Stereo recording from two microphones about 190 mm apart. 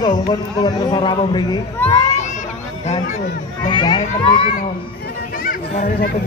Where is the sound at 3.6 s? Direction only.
20° left (ahead or behind).